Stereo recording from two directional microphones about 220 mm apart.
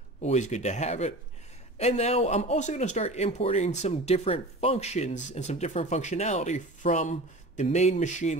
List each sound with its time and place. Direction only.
0.2 s speech: 30° left (ahead or behind)